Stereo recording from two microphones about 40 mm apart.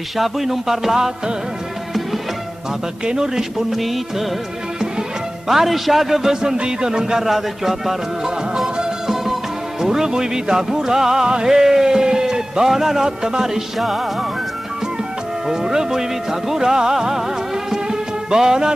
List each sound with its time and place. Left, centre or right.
0.2 s speech: centre
3.1 s speech: centre
5.5 s speech: centre
8.5 s music: centre
13.7 s speech: centre
15.4 s speech: centre
17.6 s music: centre